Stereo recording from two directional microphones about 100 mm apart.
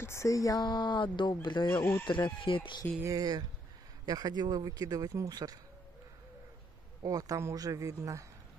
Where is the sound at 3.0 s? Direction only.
35° right (ahead or behind).